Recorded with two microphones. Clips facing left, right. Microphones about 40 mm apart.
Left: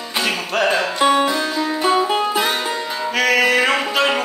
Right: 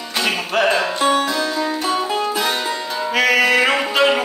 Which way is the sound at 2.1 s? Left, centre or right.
Left.